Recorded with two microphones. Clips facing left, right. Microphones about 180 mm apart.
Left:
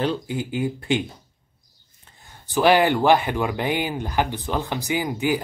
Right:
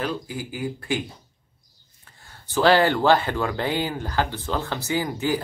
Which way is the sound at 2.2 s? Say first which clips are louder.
Left 1 dB; 15° left (ahead or behind).